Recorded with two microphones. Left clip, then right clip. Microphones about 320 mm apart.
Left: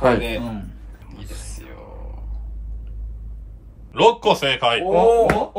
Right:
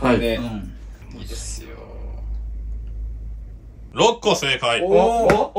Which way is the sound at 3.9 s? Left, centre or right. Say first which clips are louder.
Left 2 dB; centre.